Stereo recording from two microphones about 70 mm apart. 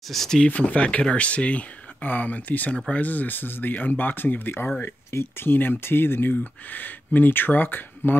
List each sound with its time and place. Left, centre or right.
0.1 s speech: centre
0.5 s speech: left